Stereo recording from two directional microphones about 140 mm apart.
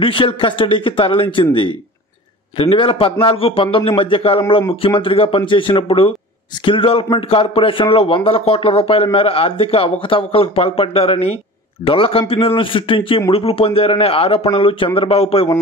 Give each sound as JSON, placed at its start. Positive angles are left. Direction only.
{"t": 0.0, "sound": "a man's voice", "side_deg": 40}